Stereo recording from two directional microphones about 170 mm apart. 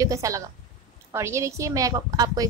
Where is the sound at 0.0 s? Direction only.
20° right (ahead or behind).